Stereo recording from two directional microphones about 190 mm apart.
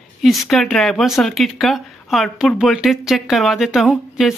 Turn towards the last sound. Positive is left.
turn(degrees=0)  # may be behind; listen again after turning